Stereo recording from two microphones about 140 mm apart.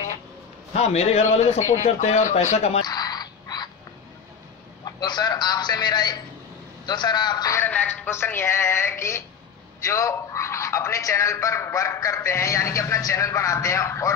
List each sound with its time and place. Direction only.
0.7 s speech: 50° left (ahead or behind)
2.8 s frog: 30° left (ahead or behind)
4.8 s a man's voice: 30° left (ahead or behind)
7.5 s a man's voice: 15° left (ahead or behind)